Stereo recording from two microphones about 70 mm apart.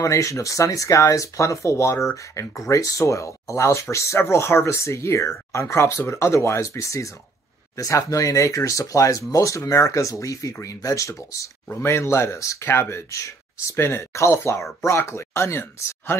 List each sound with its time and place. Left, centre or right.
0.0 s speech: left
11.7 s speech: left